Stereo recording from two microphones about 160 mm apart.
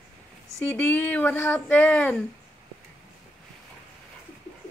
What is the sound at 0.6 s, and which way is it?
Speech, 10° left (ahead or behind).